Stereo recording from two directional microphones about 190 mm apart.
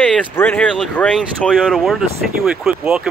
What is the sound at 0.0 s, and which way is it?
Speech, 5° left (ahead or behind).